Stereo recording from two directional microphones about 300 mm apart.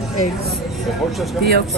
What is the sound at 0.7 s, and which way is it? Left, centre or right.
Speech, centre.